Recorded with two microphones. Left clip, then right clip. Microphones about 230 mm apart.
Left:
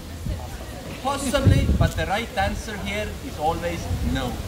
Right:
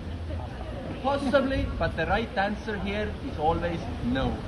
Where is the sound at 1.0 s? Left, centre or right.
Centre.